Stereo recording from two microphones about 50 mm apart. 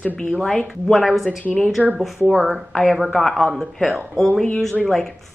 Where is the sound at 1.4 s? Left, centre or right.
Left.